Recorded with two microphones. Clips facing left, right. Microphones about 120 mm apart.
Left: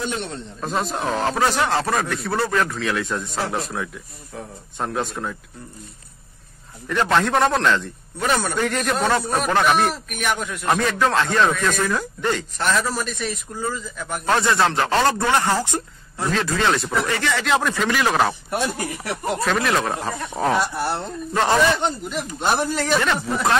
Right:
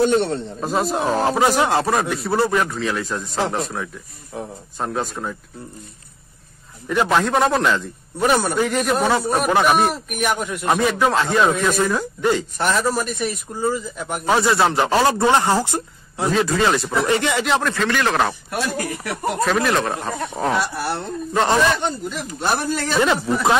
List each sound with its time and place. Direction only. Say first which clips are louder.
0.0 s a man's voice: right 10 dB; 40° right (ahead or behind)
0.6 s a man's voice: right 2 dB; 5° right (ahead or behind)
4.3 s speech: right 4 dB; 20° right (ahead or behind)
4.7 s a man's voice: right 1 dB; centre (ahead or behind)
6.9 s a man's voice: right 1 dB; 5° right (ahead or behind)
17.0 s speech: right 4 dB; 20° right (ahead or behind)
17.5 s speech: right 1 dB; 10° left (ahead or behind)
18.5 s speech: even; 25° left (ahead or behind)
19.4 s a man's voice: right 2 dB; centre (ahead or behind)
20.5 s speech: even; 20° left (ahead or behind)
21.3 s a man's voice: right 1 dB; centre (ahead or behind)
22.1 s speech: left 1 dB; 20° left (ahead or behind)